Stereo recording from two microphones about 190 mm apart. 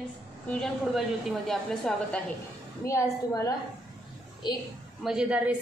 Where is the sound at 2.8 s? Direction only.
15° left (ahead or behind).